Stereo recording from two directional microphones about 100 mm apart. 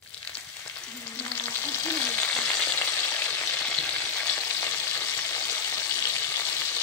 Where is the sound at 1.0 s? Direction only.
15° left (ahead or behind).